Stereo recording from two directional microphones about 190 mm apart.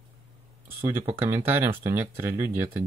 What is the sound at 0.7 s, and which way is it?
Speech, 15° right (ahead or behind).